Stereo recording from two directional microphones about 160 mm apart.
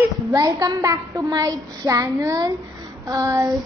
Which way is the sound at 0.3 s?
20° right (ahead or behind).